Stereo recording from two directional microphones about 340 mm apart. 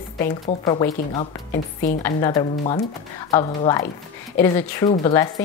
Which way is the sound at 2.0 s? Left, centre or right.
Centre.